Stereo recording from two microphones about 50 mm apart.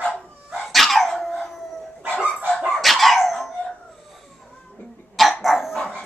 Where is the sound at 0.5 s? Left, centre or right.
Centre.